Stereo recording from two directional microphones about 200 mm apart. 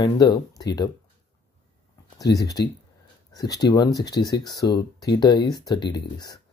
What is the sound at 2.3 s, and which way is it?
Speech, 20° left (ahead or behind).